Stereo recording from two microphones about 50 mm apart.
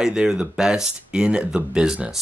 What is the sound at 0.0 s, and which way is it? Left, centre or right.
Speech, centre.